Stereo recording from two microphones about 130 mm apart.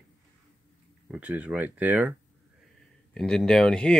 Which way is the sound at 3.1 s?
5° left (ahead or behind).